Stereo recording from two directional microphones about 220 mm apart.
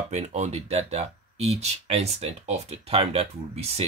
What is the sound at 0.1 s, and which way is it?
Speech, 30° right (ahead or behind).